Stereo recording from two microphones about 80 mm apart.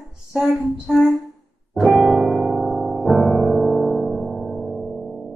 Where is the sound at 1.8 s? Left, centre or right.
Centre.